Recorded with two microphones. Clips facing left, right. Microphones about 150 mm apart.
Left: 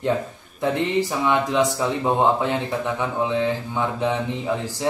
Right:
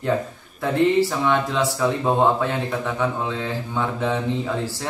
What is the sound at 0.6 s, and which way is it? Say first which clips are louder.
Speech: right 3 dB; 20° left (ahead or behind).